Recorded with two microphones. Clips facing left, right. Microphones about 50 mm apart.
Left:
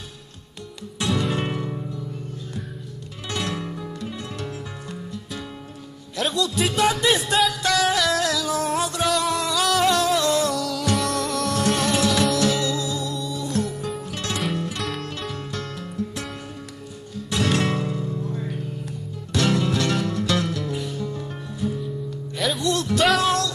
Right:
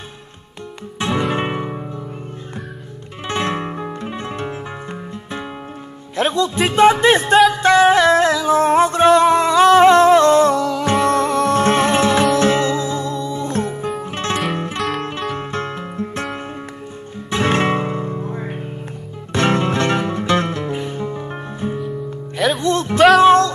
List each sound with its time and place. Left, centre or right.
0.9 s music: right
3.3 s music: right
6.1 s speech: right
7.5 s music: right
17.3 s guitar: right
19.3 s music: right